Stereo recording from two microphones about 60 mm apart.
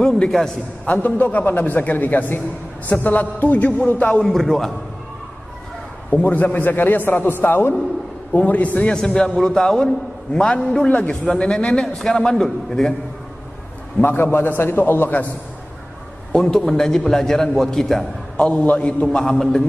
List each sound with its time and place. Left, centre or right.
0.9 s a man's voice: left
4.2 s a man's voice: centre
6.0 s a man's voice: left
8.8 s a man's voice: centre
14.0 s a man's voice: left
16.3 s a man's voice: centre
18.4 s a man's voice: left
19.3 s a man's voice: centre